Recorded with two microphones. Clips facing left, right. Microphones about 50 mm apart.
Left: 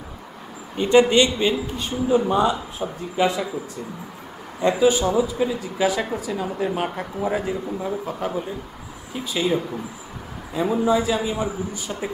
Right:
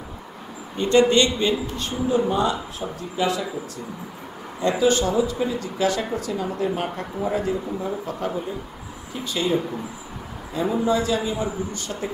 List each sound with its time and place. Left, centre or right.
0.7 s a man's voice: centre
4.6 s speech: centre